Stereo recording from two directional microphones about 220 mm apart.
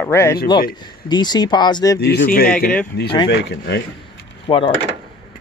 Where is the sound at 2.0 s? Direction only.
45° left (ahead or behind).